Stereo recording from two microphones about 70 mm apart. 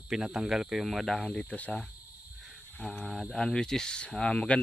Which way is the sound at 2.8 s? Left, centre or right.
Centre.